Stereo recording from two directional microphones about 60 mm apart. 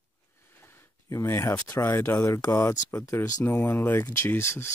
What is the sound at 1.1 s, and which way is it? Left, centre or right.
Speech, left.